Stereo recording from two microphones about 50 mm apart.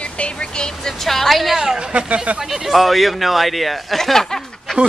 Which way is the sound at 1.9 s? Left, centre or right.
Right.